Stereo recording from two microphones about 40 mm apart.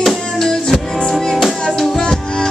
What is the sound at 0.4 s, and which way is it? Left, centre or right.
Music, centre.